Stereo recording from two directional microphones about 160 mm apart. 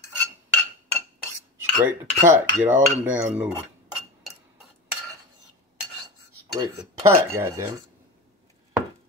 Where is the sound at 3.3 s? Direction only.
5° right (ahead or behind).